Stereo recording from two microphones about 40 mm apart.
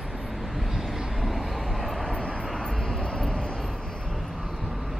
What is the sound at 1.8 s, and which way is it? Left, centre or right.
Vehicle, centre.